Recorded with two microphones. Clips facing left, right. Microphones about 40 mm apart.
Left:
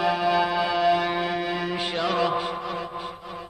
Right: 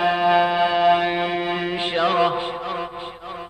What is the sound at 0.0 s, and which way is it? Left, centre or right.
Music, right.